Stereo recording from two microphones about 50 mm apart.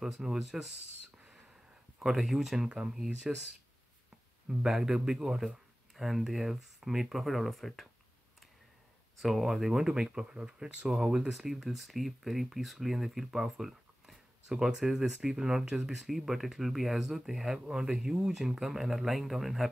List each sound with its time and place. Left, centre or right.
0.0 s speech: centre
2.0 s speech: centre
4.5 s speech: centre
9.2 s speech: centre
11.3 s speech: centre
17.6 s speech: centre
17.9 s speech: centre